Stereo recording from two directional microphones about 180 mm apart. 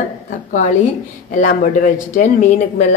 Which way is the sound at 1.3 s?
45° left (ahead or behind).